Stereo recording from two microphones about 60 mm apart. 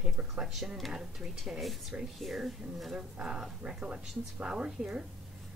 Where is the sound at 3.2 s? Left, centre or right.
Centre.